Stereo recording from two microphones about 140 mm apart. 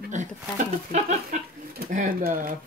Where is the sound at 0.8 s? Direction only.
55° right (ahead or behind).